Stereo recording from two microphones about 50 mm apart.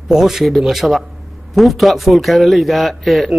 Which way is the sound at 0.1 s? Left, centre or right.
Centre.